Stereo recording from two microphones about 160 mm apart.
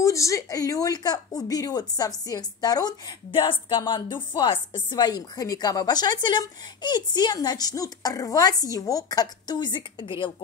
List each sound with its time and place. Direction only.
0.0 s speech: 20° left (ahead or behind)